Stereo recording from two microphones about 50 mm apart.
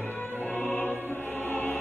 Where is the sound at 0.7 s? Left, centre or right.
Left.